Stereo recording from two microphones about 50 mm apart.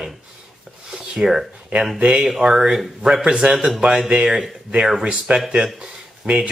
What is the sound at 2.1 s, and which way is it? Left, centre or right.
Speech, centre.